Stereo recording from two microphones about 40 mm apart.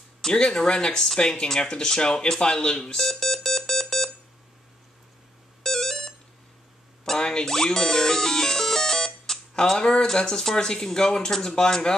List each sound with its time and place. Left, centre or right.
0.2 s speech: centre
2.8 s alarm: centre
5.6 s alarm clock: centre
7.1 s music: centre